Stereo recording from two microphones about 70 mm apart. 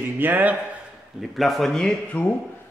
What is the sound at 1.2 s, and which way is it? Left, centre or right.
Speech, centre.